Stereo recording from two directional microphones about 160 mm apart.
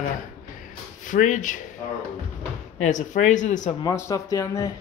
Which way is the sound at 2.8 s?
50° left (ahead or behind).